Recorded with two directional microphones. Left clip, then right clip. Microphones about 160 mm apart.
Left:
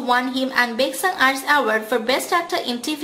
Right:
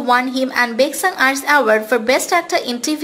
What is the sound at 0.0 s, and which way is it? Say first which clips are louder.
A woman's voice: right 4 dB; 30° right (ahead or behind).